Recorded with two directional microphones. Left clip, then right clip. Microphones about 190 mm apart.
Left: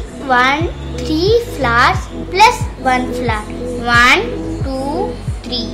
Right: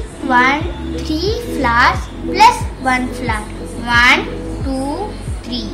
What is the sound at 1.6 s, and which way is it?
Music, 30° left (ahead or behind).